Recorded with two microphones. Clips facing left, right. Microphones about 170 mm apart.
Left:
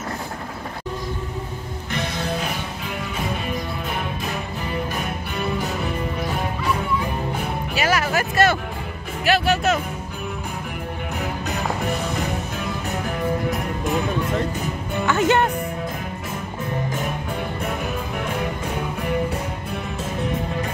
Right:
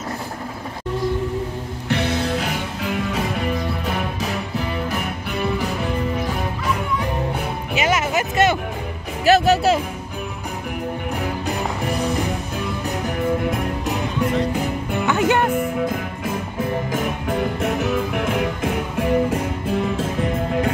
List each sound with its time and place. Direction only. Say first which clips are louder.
1.9 s music: right 5 dB; 70° right (ahead or behind)
7.7 s a sound: right 2 dB; 20° right (ahead or behind)
9.2 s music: right 5 dB; 40° right (ahead or behind)
15.0 s music: even; 10° right (ahead or behind)
18.1 s music: right 4 dB; 90° right